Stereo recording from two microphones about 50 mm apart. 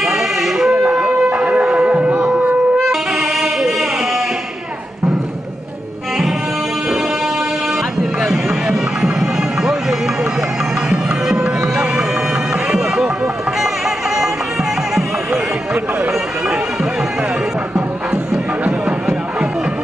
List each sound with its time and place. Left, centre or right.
0.0 s a sound: centre
0.8 s shofar: right
2.8 s music: centre
8.3 s music: centre
11.2 s music: centre
18.7 s music: centre